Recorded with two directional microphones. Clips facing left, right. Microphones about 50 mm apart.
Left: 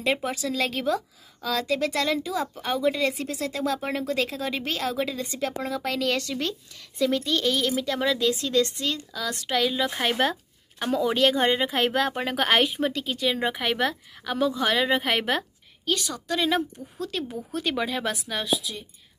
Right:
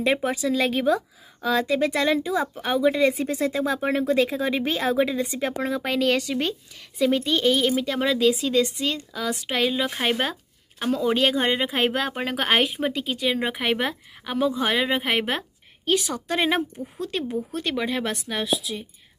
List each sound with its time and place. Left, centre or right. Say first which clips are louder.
0.2 s speech: right 4 dB; centre
2.5 s speech: right 3 dB; centre
5.2 s speech: right 3 dB; centre
15.8 s speech: right 4 dB; right
17.0 s speech: right 3 dB; centre